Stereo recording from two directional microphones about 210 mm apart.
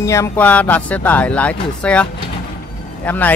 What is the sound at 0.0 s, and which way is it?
Speech, 15° left (ahead or behind).